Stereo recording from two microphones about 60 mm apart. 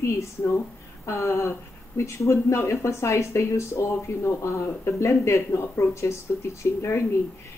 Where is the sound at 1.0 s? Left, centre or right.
Left.